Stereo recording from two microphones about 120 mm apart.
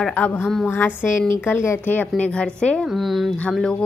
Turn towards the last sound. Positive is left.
turn(degrees=5)  # may be behind; listen again after turning